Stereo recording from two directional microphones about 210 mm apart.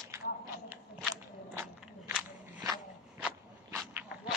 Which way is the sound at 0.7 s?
10° right (ahead or behind).